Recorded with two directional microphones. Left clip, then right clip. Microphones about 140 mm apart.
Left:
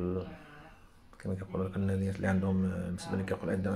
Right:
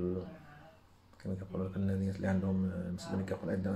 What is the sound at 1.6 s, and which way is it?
Speech, 20° left (ahead or behind).